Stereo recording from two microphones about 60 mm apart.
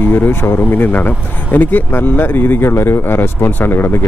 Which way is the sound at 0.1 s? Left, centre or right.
Left.